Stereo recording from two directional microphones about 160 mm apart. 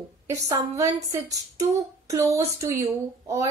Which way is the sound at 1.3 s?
20° right (ahead or behind).